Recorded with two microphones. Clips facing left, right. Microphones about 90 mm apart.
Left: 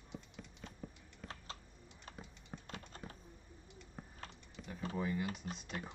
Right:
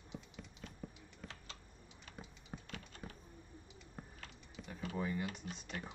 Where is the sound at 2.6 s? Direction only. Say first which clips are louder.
Left 1 dB; 35° left (ahead or behind).